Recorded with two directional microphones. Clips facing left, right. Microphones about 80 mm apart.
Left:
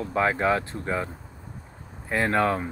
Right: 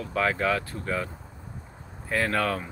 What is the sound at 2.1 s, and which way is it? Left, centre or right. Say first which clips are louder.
Speech: left 3 dB; left.